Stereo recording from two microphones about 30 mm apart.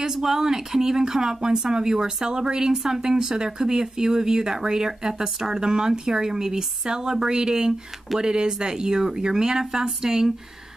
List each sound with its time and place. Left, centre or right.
0.0 s speech: centre